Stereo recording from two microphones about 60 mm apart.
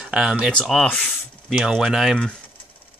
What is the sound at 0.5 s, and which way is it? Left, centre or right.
Speech, centre.